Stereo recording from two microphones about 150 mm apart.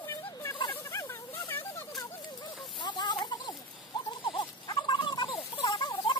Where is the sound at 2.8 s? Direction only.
30° left (ahead or behind).